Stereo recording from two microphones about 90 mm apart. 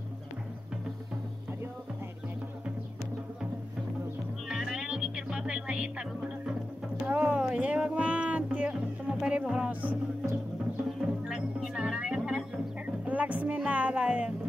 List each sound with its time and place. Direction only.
4.5 s music: 10° right (ahead or behind)
11.0 s music: 10° right (ahead or behind)